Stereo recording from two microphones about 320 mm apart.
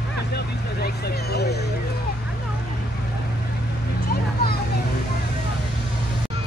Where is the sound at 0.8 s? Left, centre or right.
Left.